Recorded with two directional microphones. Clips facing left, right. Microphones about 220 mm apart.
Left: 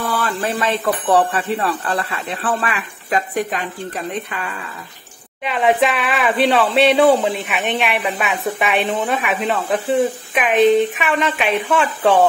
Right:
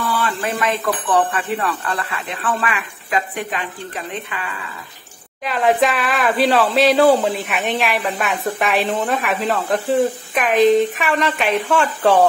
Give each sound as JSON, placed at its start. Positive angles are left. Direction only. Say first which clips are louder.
{"t": 0.1, "sound": "a sound", "louder": "left 1 dB", "side_deg": 40}
{"t": 1.3, "sound": "speech", "louder": "left 2 dB", "side_deg": 30}
{"t": 5.4, "sound": "speech", "louder": "even", "side_deg": 0}